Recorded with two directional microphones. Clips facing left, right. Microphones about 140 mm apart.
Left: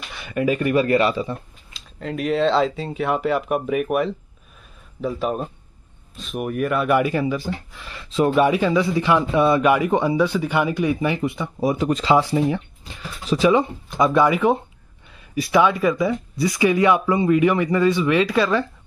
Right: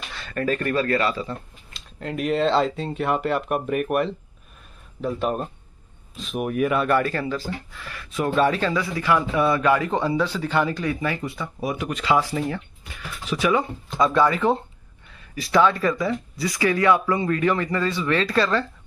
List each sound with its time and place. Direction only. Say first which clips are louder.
0.1 s speech: left 4 dB; 10° left (ahead or behind)
1.7 s speech: left 2 dB; centre (ahead or behind)
6.9 s a man's voice: left 3 dB; 15° left (ahead or behind)
11.8 s a man's voice: left 3 dB; 30° left (ahead or behind); by 18.7 s 10° left (ahead or behind)